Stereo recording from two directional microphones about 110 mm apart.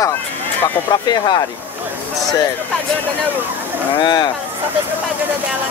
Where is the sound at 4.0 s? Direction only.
40° left (ahead or behind).